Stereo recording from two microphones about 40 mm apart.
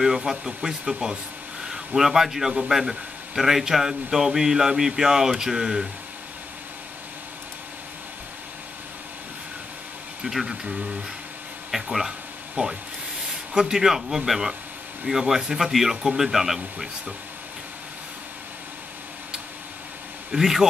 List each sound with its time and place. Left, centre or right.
0.0 s speech: centre
10.2 s speech: centre
12.6 s speech: right
13.7 s speech: centre
20.2 s speech: centre